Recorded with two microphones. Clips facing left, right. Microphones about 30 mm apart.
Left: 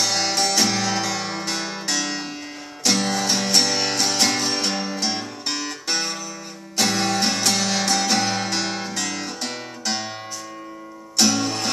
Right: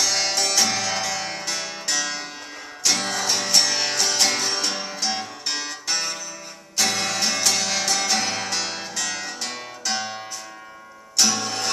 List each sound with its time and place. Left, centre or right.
0.3 s music: centre
11.1 s music: centre